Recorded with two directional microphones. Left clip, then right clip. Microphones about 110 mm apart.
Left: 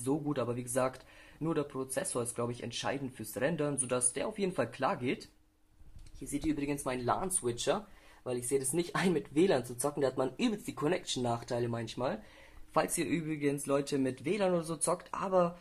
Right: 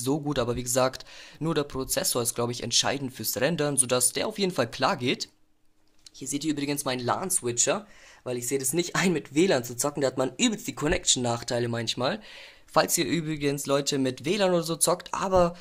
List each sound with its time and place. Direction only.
0.0 s speech: 40° right (ahead or behind)
6.3 s speech: 35° right (ahead or behind)